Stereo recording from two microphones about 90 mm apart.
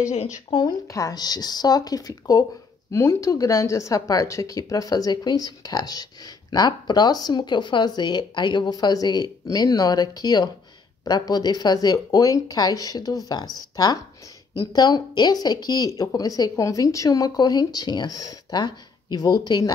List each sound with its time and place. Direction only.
0.5 s speech: 60° left (ahead or behind)
0.8 s speech: 40° left (ahead or behind)